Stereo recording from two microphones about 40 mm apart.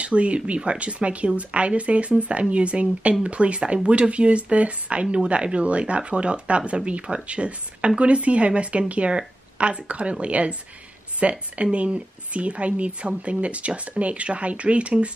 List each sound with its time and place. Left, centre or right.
0.0 s speech: right